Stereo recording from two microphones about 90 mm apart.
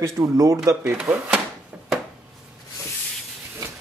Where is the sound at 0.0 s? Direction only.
40° right (ahead or behind).